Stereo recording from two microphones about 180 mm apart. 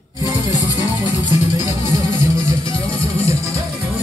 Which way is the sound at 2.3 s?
15° right (ahead or behind).